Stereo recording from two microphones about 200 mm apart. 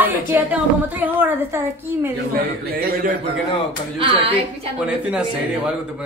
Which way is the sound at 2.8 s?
50° right (ahead or behind).